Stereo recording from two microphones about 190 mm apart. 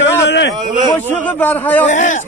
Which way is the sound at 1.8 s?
40° left (ahead or behind).